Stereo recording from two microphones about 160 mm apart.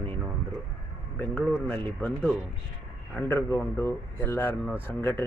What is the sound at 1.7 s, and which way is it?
Speech, 10° left (ahead or behind).